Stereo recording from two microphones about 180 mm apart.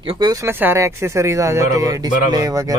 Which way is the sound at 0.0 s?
25° right (ahead or behind).